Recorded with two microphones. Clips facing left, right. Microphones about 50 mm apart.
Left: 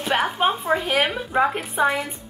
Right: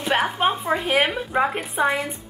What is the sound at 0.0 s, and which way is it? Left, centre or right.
A woman's voice, centre.